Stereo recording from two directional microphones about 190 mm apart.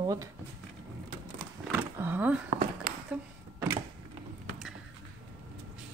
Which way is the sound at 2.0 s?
10° right (ahead or behind).